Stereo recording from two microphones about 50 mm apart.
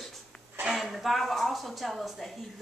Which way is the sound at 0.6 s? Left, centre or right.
Centre.